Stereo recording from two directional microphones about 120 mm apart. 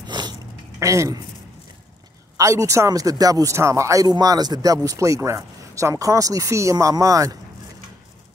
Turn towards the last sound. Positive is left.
turn(degrees=-30)  # may be behind; listen again after turning